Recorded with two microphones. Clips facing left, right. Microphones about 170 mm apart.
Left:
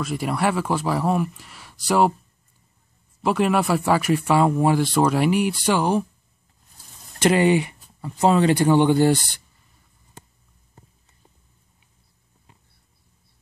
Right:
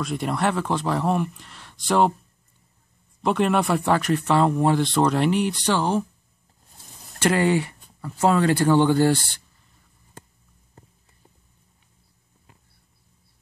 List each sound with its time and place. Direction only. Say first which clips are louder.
0.0 s speech: left 1 dB; 5° left (ahead or behind)
3.2 s speech: left 1 dB; 5° left (ahead or behind)
7.2 s speech: left 3 dB; 20° left (ahead or behind)